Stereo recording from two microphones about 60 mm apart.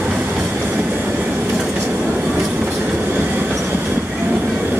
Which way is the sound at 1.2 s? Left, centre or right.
Right.